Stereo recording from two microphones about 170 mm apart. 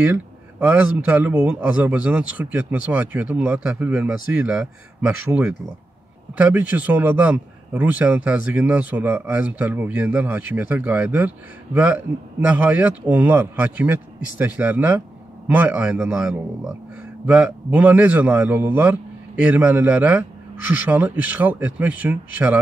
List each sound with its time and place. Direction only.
0.0 s speech: 10° right (ahead or behind)